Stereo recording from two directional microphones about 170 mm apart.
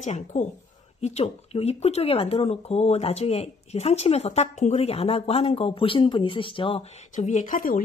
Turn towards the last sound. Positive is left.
turn(degrees=50)  # may be behind; listen again after turning